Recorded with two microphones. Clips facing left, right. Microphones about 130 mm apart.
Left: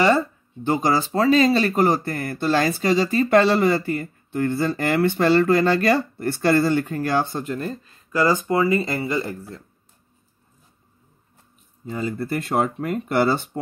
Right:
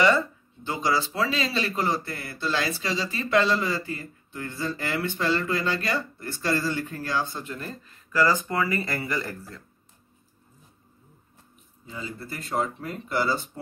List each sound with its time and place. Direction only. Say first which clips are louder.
0.7 s speech: left 6 dB; 50° left (ahead or behind); by 7.2 s 65° left (ahead or behind)
7.3 s speech: left 8 dB; 40° left (ahead or behind)
7.6 s speech: left 8 dB; 20° left (ahead or behind)
11.8 s speech: left 10 dB; 50° left (ahead or behind)